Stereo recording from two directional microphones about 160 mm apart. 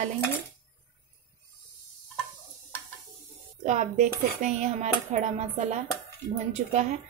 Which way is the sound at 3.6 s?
50° right (ahead or behind).